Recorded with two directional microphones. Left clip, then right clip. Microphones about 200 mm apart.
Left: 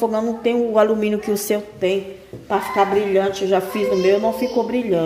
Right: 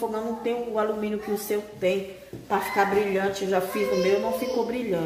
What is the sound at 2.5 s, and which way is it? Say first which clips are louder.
A woman's voice: left 5 dB; 35° left (ahead or behind).